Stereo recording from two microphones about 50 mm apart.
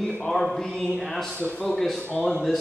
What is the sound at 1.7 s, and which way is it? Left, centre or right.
Speech, centre.